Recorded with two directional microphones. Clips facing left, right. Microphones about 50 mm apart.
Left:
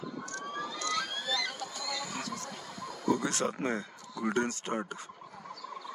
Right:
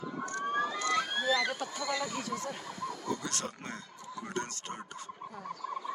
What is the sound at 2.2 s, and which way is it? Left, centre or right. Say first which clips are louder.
Speech: right 3 dB; right.